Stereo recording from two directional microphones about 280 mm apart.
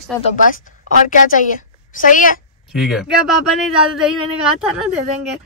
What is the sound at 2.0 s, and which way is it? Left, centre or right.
Speech, left.